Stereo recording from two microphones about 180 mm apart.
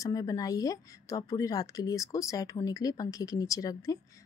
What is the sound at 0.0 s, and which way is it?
A woman's voice, 20° left (ahead or behind).